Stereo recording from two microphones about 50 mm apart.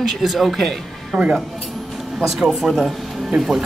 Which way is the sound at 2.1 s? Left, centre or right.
Centre.